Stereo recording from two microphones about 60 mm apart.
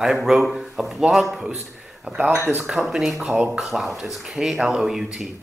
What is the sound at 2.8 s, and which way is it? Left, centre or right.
Speech, centre.